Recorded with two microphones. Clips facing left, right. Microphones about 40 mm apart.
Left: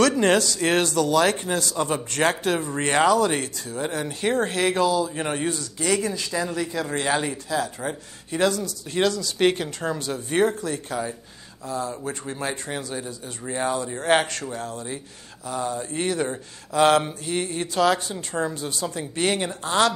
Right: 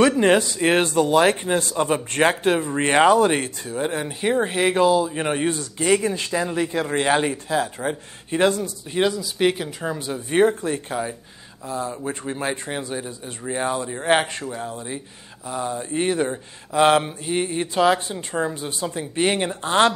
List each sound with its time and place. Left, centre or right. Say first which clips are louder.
0.0 s speech: right 2 dB; centre
8.9 s speech: right 1 dB; centre
9.4 s speech: even; centre; by 19.9 s right